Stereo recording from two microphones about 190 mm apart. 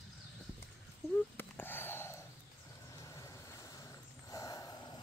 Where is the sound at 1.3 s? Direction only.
10° left (ahead or behind).